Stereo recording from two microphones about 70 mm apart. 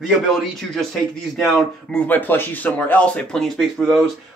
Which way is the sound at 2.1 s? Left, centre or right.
Left.